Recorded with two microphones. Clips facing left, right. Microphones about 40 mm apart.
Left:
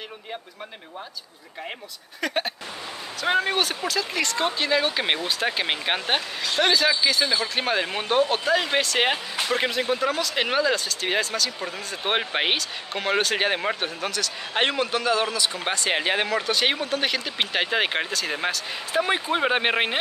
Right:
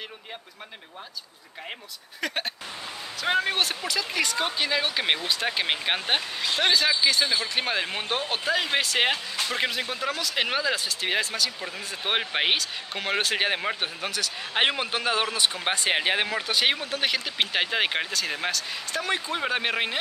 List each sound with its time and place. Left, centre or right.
2.2 s a man's voice: centre
18.9 s speech: left